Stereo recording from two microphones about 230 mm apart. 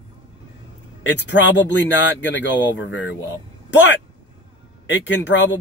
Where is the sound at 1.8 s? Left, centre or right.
Left.